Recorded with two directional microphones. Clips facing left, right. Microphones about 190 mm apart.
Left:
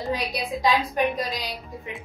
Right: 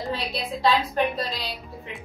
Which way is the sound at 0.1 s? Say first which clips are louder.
Left 5 dB; 15° left (ahead or behind).